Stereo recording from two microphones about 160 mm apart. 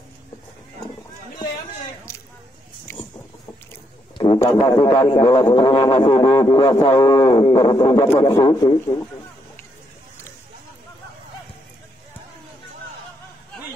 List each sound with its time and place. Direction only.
4.5 s a man's voice: 30° left (ahead or behind)